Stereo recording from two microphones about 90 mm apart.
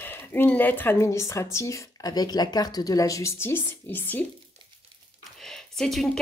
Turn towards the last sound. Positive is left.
turn(degrees=5)  # may be behind; listen again after turning